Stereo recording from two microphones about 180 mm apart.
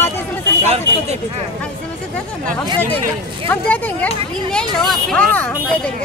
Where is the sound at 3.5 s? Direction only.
10° left (ahead or behind).